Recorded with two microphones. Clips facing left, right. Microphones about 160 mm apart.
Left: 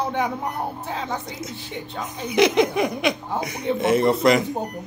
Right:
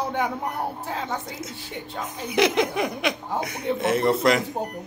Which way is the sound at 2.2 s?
Centre (ahead or behind).